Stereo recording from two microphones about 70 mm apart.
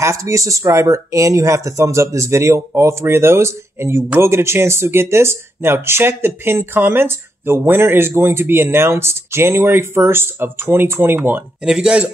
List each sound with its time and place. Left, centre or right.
0.0 s speech: right
11.6 s speech: centre